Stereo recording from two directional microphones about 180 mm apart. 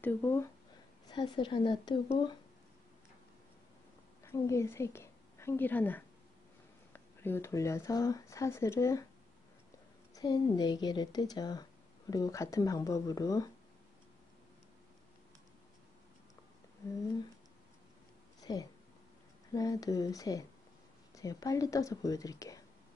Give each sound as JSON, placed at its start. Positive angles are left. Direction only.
{"t": 0.0, "sound": "speech", "side_deg": 10}
{"t": 1.0, "sound": "a woman's voice", "side_deg": 25}
{"t": 4.2, "sound": "a woman's voice", "side_deg": 15}
{"t": 10.1, "sound": "a woman's voice", "side_deg": 20}
{"t": 18.4, "sound": "a sound", "side_deg": 20}
{"t": 19.5, "sound": "a woman's voice", "side_deg": 20}